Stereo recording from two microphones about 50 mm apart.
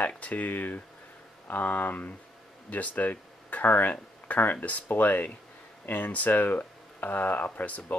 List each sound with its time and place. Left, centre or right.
0.0 s speech: left